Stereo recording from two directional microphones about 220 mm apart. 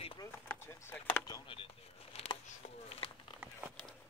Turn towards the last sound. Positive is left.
turn(degrees=-5)  # may be behind; listen again after turning